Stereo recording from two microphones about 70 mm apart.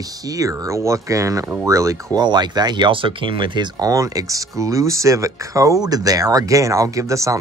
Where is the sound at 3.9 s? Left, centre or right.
Right.